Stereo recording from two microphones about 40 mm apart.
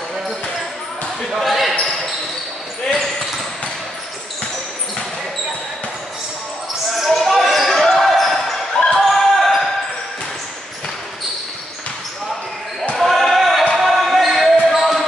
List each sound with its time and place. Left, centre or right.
1.4 s basketball bounce: centre
7.2 s basketball bounce: centre
8.8 s basketball bounce: left
9.1 s basketball bounce: centre
12.9 s basketball bounce: centre